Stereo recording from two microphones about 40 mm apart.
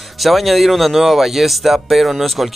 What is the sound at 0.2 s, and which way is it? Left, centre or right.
Speech, centre.